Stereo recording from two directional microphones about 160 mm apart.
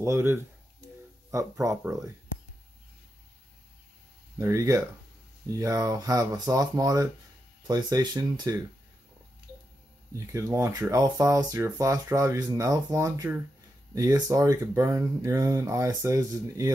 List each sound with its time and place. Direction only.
0.0 s speech: 15° right (ahead or behind)
4.4 s speech: 20° right (ahead or behind)
10.1 s speech: 20° right (ahead or behind)